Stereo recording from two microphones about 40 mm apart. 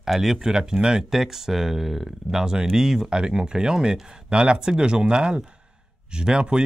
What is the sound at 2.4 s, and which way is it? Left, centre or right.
Speech, centre.